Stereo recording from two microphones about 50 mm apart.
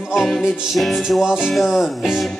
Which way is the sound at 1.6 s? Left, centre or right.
Centre.